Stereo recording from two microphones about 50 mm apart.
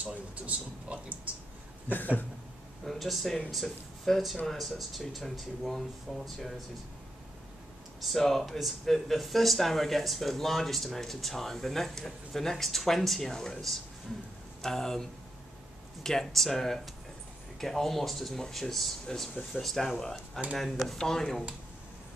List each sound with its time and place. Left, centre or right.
0.0 s speech: right
1.9 s a sound: left
2.8 s speech: centre
8.0 s speech: centre